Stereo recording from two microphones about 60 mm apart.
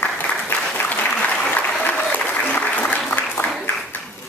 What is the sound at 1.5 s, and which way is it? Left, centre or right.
Applause, left.